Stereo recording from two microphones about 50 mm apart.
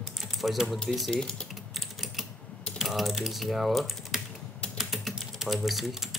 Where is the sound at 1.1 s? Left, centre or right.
Centre.